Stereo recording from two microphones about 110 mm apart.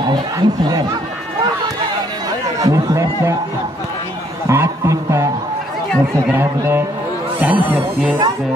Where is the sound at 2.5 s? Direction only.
30° right (ahead or behind).